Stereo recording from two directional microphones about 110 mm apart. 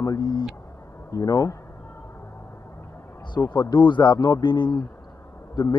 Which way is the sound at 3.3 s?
40° left (ahead or behind).